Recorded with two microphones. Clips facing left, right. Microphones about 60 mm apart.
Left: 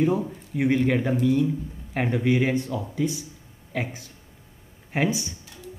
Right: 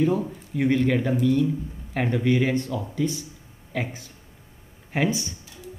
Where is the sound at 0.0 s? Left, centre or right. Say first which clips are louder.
Even; centre.